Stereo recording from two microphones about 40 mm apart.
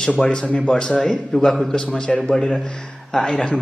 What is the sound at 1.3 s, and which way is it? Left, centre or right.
A man's voice, centre.